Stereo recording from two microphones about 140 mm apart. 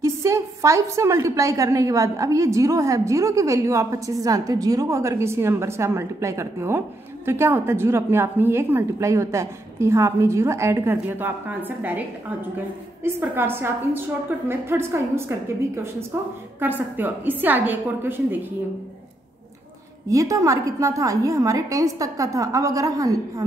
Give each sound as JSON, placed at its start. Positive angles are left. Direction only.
{"t": 0.0, "sound": "a woman's voice", "side_deg": -20}
{"t": 13.3, "sound": "a woman's voice", "side_deg": -15}
{"t": 20.1, "sound": "a woman's voice", "side_deg": -25}